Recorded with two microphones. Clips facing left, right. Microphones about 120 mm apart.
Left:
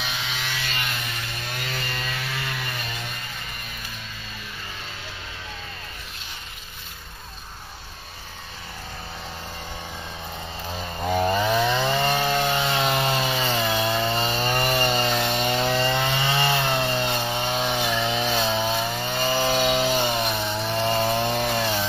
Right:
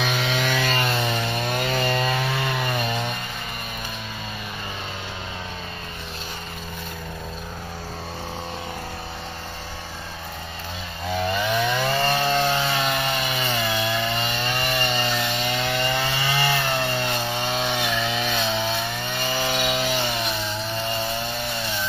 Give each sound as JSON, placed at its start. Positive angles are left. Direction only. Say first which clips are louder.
{"t": 0.0, "sound": "chainsaw", "louder": "right 8 dB", "side_deg": -90}
{"t": 0.7, "sound": "vehicle", "louder": "right 8 dB", "side_deg": -35}
{"t": 1.6, "sound": "chainsaw", "louder": "right 9 dB", "side_deg": -30}
{"t": 11.1, "sound": "chainsaw", "louder": "left 2 dB", "side_deg": 40}
{"t": 17.1, "sound": "chainsaw", "louder": "even", "side_deg": 10}
{"t": 17.4, "sound": "chainsaw", "louder": "even", "side_deg": 20}
{"t": 20.8, "sound": "wood", "louder": "left 7 dB", "side_deg": 40}
{"t": 21.4, "sound": "chainsaw", "louder": "left 5 dB", "side_deg": 55}